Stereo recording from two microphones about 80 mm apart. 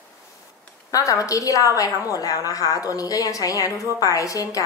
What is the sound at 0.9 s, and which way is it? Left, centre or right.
A woman's voice, left.